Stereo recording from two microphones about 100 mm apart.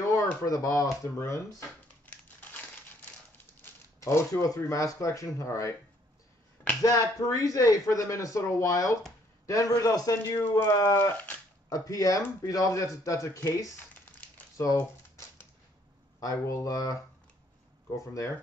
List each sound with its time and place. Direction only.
0.1 s speech: 35° left (ahead or behind)
4.0 s speech: 30° left (ahead or behind)
6.8 s speech: 35° left (ahead or behind)
14.6 s a sound: 35° left (ahead or behind)
16.2 s speech: 35° left (ahead or behind)